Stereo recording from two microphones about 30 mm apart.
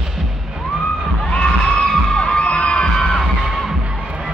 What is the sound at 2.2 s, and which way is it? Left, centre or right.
Crowd, left.